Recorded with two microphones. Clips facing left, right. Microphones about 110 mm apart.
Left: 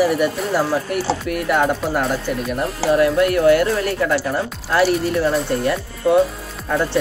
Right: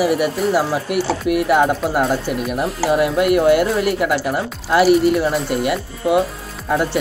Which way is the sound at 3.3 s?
15° right (ahead or behind).